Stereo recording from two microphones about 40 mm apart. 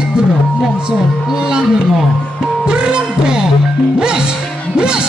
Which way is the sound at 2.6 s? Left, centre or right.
Right.